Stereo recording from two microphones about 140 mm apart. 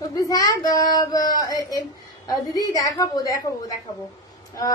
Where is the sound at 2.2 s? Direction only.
25° left (ahead or behind).